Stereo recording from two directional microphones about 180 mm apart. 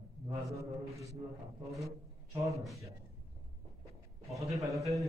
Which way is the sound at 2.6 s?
Centre (ahead or behind).